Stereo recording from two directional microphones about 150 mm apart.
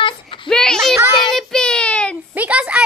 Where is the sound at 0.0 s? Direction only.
35° left (ahead or behind).